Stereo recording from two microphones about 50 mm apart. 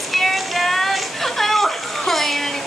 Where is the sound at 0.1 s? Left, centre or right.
Centre.